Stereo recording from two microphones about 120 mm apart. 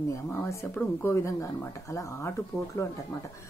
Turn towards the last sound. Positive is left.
turn(degrees=25)  # may be behind; listen again after turning